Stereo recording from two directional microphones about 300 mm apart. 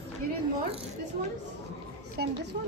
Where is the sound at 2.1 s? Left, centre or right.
Right.